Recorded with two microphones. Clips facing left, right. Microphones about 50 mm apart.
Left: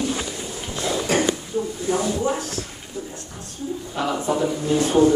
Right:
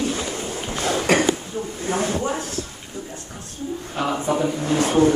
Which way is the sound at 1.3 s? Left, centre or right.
Right.